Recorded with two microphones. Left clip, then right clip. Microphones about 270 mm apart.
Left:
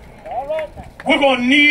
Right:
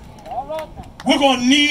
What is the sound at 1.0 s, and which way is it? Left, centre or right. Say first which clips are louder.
Speech: left 1 dB; right.